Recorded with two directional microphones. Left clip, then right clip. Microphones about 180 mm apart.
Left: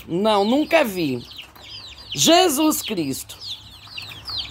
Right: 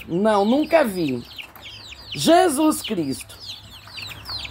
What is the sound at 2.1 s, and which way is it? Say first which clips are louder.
Speech: even; 10° left (ahead or behind).